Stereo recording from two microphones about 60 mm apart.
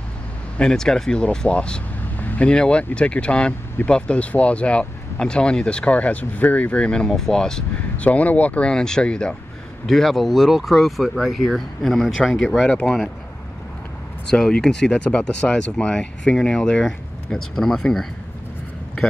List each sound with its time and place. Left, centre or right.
0.6 s speech: centre
2.1 s vehicle: left
2.4 s speech: centre
7.1 s speech: centre
8.0 s speech: left
9.8 s speech: centre
12.6 s speech: centre
14.3 s speech: centre